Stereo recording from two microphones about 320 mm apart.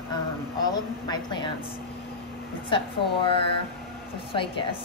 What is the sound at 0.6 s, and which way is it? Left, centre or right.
Speech, centre.